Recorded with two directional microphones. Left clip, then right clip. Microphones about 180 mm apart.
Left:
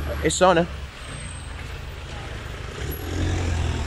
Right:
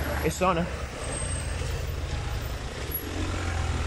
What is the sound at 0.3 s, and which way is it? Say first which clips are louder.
Speech: left 9 dB; 20° left (ahead or behind).